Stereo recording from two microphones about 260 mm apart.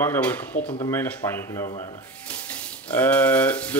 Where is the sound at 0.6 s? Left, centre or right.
Left.